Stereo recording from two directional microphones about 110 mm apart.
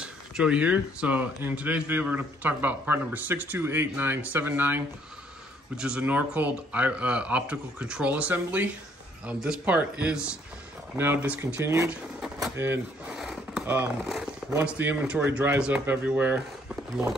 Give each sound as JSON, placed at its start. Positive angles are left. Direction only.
{"t": 0.0, "sound": "speech", "side_deg": -10}
{"t": 11.9, "sound": "speech", "side_deg": -5}
{"t": 12.5, "sound": "speech", "side_deg": -20}
{"t": 13.0, "sound": "a sound", "side_deg": -5}
{"t": 14.7, "sound": "speech", "side_deg": -15}